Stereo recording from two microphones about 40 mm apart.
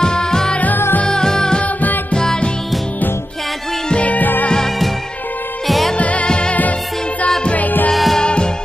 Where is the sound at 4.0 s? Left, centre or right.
Left.